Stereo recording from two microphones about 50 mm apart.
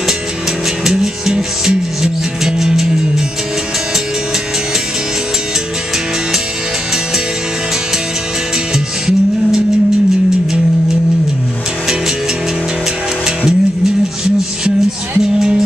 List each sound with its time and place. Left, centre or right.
0.8 s music: centre
8.7 s music: centre
13.5 s music: centre